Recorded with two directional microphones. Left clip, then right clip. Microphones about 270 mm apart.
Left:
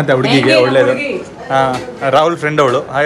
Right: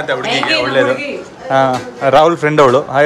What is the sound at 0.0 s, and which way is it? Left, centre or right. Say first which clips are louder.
Speech: left 4 dB; centre.